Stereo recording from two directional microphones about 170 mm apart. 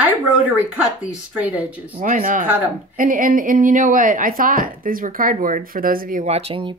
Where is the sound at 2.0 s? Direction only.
50° right (ahead or behind).